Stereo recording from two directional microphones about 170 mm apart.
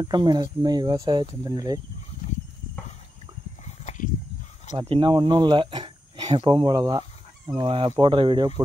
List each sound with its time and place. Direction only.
0.0 s speech: 25° right (ahead or behind)
3.6 s a sound: 45° left (ahead or behind)
4.7 s speech: 30° right (ahead or behind)